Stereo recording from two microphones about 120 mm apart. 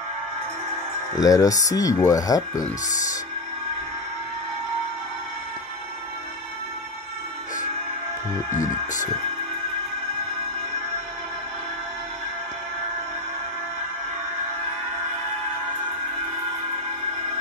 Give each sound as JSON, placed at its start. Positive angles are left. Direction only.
{"t": 1.1, "sound": "speech", "side_deg": 30}
{"t": 8.5, "sound": "speech", "side_deg": 90}